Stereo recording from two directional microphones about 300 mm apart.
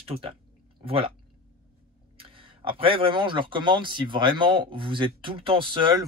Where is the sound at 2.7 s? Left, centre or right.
Centre.